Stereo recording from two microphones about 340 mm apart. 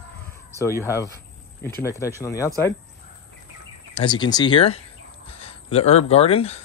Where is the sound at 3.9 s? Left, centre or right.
Centre.